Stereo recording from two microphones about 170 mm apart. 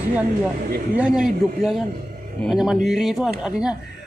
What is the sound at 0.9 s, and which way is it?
Speech, 5° right (ahead or behind).